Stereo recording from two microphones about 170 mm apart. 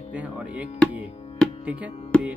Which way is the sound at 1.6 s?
10° right (ahead or behind).